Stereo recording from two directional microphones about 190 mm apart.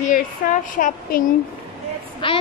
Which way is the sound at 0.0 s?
45° left (ahead or behind).